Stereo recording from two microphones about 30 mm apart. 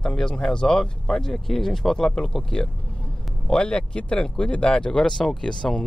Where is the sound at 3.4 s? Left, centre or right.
Left.